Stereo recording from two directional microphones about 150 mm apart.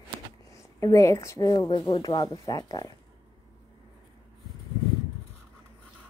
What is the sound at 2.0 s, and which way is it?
Speech, 25° left (ahead or behind).